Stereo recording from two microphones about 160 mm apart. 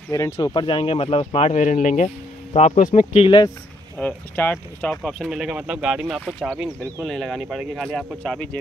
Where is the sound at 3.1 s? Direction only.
30° left (ahead or behind).